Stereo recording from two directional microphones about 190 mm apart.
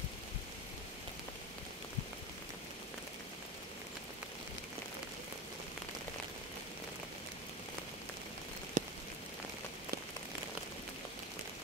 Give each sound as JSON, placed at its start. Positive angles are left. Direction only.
{"t": 8.8, "sound": "rain on surface", "side_deg": -40}